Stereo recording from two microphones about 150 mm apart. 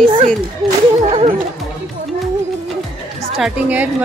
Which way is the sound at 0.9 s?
45° right (ahead or behind).